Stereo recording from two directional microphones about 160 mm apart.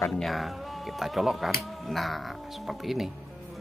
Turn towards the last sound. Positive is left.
turn(degrees=0)  # may be behind; listen again after turning